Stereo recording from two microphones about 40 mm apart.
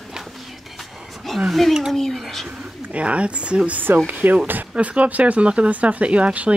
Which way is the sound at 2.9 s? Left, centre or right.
Right.